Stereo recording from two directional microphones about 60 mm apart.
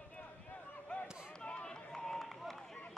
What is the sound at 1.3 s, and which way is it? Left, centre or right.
Run, centre.